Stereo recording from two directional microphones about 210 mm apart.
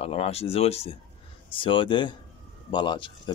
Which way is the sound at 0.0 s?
30° left (ahead or behind).